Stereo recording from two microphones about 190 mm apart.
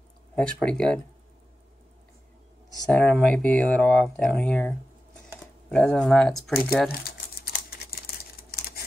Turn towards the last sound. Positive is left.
turn(degrees=55)  # may be behind; listen again after turning